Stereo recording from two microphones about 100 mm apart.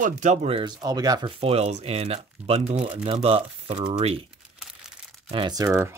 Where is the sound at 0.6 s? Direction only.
45° right (ahead or behind).